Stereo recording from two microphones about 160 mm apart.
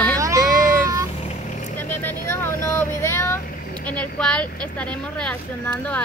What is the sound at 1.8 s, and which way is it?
Vehicle, 10° left (ahead or behind).